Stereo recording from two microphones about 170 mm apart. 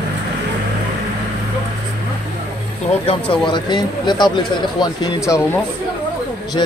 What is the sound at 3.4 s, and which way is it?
A man's voice, 25° left (ahead or behind).